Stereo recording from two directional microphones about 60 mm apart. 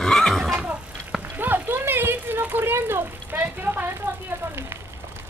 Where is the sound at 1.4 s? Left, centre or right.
Right.